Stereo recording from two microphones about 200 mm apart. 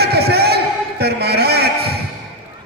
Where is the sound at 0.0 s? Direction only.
55° right (ahead or behind).